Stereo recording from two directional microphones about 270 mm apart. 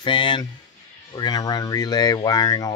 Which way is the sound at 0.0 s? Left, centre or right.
Centre.